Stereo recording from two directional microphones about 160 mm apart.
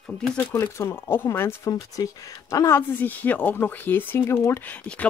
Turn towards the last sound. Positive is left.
turn(degrees=10)  # may be behind; listen again after turning